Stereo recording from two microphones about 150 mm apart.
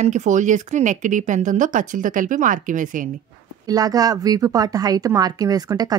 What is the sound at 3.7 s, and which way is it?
A woman's voice, 25° right (ahead or behind).